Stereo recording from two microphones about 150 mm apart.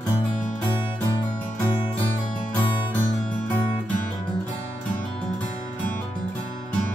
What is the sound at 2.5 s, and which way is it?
Music, 10° left (ahead or behind).